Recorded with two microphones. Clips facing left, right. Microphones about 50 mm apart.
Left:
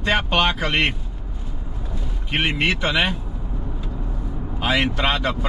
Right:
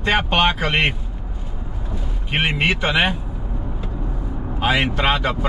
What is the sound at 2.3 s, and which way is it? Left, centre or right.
Speech, centre.